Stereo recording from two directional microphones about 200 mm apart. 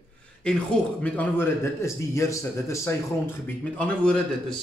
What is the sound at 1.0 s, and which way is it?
A man's voice, 10° left (ahead or behind).